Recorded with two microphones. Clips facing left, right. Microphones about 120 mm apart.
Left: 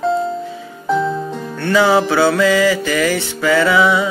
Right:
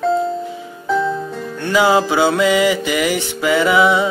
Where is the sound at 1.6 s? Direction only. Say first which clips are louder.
Left 1 dB; 15° right (ahead or behind).